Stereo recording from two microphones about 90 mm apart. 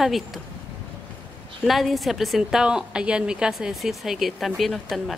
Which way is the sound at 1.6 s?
Centre (ahead or behind).